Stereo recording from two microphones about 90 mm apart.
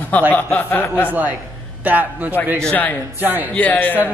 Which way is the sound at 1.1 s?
20° right (ahead or behind).